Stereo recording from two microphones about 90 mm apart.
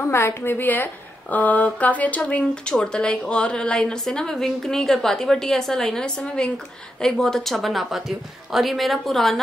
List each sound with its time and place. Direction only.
0.1 s a woman's voice: 30° left (ahead or behind); by 9.4 s centre (ahead or behind)